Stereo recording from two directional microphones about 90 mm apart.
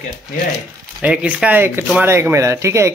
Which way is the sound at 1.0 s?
15° right (ahead or behind).